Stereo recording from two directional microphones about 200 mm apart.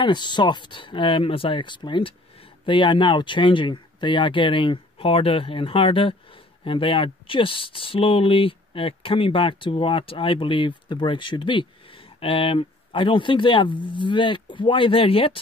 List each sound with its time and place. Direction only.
0.0 s speech: 20° left (ahead or behind)